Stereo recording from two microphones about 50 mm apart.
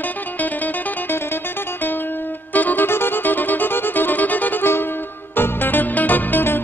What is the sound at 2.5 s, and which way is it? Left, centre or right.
Music, left.